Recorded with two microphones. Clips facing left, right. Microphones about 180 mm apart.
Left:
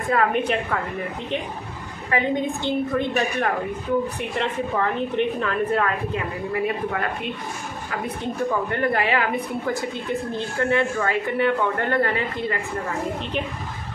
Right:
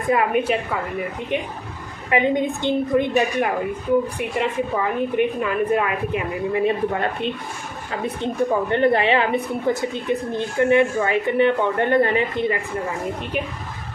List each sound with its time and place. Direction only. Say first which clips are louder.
0.1 s a woman's voice: right 2 dB; 10° right (ahead or behind)
2.0 s a woman's voice: right 3 dB; 20° right (ahead or behind)